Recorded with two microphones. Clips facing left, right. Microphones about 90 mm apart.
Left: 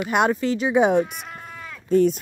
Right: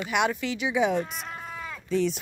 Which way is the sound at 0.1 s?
40° left (ahead or behind).